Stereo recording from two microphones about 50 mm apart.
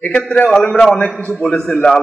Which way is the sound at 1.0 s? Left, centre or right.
Left.